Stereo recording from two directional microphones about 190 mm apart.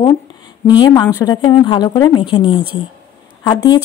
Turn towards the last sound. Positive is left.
turn(degrees=20)  # may be behind; listen again after turning